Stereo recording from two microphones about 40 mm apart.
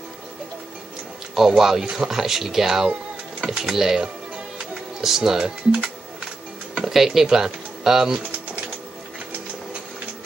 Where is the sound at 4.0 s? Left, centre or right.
Right.